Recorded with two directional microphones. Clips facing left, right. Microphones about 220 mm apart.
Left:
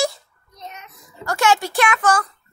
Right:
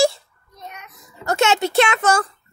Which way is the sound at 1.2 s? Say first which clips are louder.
Right 1 dB; 25° right (ahead or behind).